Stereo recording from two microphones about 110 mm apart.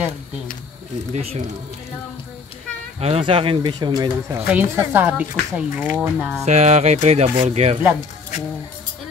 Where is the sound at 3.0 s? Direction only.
60° right (ahead or behind); by 4.1 s 45° right (ahead or behind).